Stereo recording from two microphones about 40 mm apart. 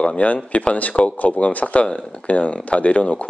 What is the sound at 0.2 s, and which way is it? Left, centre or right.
Speech, left.